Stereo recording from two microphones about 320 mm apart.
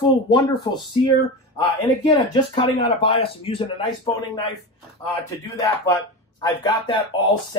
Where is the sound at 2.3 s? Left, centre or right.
Centre.